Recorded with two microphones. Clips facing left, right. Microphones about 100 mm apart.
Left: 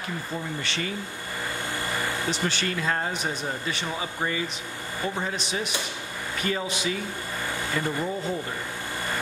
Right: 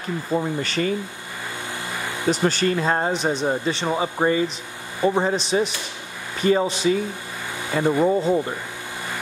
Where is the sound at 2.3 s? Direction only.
40° right (ahead or behind).